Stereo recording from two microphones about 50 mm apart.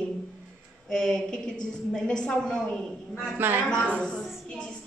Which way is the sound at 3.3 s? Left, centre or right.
Right.